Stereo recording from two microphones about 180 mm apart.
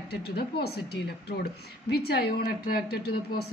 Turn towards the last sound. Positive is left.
turn(degrees=60)  # may be behind; listen again after turning